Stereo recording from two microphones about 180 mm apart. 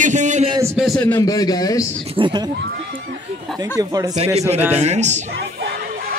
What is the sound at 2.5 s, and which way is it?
Neigh, 70° right (ahead or behind).